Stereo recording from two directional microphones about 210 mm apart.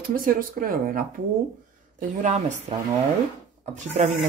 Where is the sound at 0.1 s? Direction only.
40° right (ahead or behind).